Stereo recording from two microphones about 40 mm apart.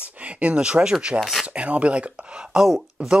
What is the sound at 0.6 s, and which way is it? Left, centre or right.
Speech, right.